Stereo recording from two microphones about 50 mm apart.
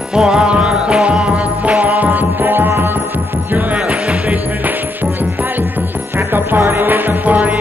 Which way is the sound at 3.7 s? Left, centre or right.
Right.